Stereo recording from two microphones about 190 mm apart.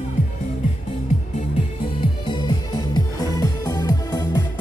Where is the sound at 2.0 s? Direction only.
25° left (ahead or behind).